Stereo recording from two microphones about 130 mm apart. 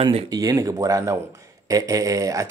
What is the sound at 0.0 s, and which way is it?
Speech, 45° right (ahead or behind).